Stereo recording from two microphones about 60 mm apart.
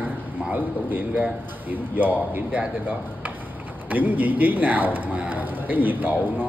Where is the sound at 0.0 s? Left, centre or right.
Right.